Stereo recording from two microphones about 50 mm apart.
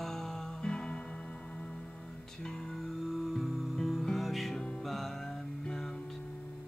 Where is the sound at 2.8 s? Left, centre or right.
Centre.